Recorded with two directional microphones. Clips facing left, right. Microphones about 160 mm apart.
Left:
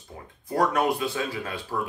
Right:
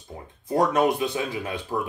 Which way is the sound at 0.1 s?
20° right (ahead or behind).